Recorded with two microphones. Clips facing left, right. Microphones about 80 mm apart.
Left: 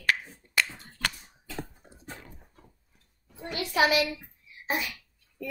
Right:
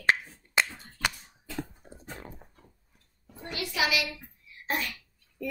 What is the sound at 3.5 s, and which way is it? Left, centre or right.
Speech, left.